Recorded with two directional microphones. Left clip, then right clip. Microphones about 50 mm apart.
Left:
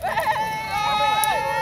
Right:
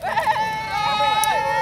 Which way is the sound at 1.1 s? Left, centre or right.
Centre.